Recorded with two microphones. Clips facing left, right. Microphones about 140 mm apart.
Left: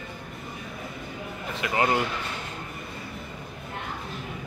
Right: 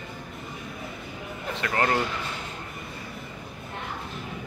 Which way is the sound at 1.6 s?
10° left (ahead or behind).